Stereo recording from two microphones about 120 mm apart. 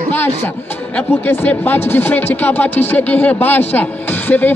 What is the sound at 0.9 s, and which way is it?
Speech, 15° left (ahead or behind).